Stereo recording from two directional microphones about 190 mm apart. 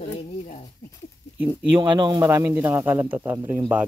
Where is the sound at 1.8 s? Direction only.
25° right (ahead or behind).